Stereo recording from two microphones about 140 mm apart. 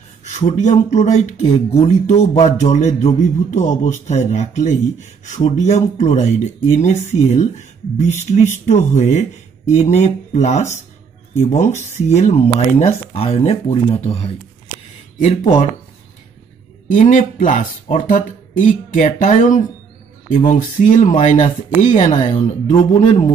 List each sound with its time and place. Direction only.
0.2 s speech: 55° left (ahead or behind)
15.1 s speech: 55° left (ahead or behind)
16.9 s speech: 65° left (ahead or behind)